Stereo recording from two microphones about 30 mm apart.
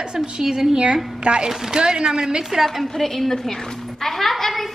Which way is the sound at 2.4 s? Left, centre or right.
Centre.